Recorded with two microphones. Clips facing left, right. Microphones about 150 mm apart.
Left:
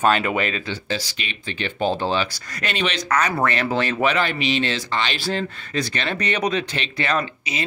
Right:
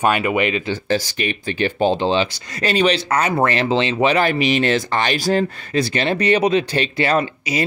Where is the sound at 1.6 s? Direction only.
35° right (ahead or behind).